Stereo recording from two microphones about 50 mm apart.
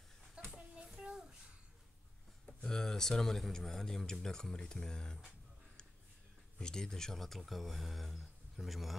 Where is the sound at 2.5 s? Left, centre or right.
Centre.